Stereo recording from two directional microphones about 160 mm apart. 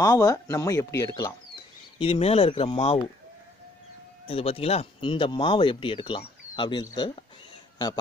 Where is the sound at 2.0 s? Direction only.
40° left (ahead or behind).